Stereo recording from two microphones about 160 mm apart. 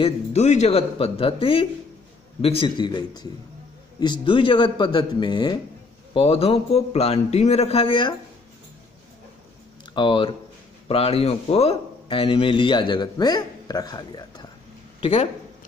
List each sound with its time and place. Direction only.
0.0 s a man's voice: 45° left (ahead or behind)
9.9 s a man's voice: 30° left (ahead or behind)
15.0 s speech: 35° left (ahead or behind)